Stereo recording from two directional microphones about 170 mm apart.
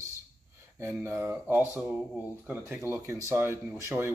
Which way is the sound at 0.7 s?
15° right (ahead or behind).